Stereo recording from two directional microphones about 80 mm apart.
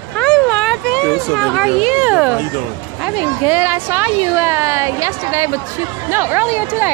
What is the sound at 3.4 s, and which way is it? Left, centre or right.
A woman's voice, right.